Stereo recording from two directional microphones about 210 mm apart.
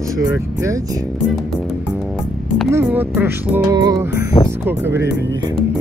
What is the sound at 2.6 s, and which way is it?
Music, 10° right (ahead or behind).